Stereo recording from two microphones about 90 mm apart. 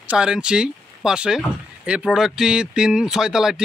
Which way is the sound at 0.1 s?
10° right (ahead or behind).